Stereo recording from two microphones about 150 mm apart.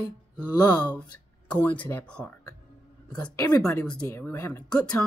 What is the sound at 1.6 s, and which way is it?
Speech, 10° left (ahead or behind).